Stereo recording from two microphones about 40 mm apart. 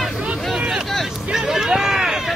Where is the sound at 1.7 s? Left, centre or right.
Centre.